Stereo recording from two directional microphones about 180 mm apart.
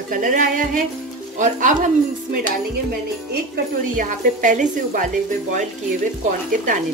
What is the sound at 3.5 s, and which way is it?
Speech, 50° right (ahead or behind).